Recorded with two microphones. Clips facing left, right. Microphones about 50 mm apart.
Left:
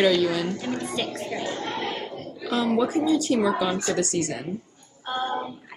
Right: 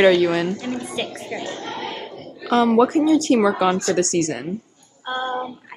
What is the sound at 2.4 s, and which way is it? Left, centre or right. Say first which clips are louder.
Speech: right 7 dB; right.